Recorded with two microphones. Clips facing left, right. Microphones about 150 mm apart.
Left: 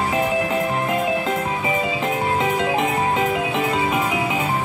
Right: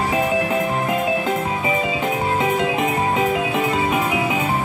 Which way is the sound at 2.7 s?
5° right (ahead or behind).